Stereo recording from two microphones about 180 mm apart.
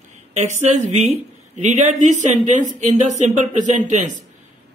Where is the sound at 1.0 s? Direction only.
40° right (ahead or behind).